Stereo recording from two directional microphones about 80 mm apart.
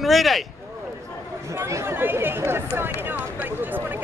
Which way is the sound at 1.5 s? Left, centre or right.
Right.